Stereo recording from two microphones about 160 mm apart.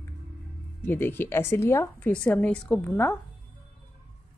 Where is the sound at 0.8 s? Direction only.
15° left (ahead or behind).